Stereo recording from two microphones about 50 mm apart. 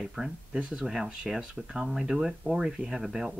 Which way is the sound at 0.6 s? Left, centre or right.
Right.